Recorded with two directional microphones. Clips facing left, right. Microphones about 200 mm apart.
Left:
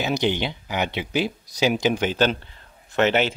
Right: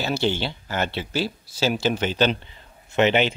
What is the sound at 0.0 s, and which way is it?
Speech, 15° left (ahead or behind).